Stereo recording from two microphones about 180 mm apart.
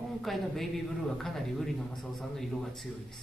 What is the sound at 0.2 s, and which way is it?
A man's voice, centre (ahead or behind).